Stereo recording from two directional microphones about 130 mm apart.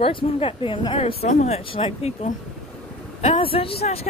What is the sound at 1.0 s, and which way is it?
Speech, 60° left (ahead or behind).